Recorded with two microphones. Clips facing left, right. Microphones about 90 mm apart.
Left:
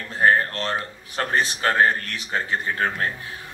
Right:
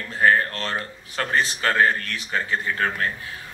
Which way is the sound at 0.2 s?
30° left (ahead or behind).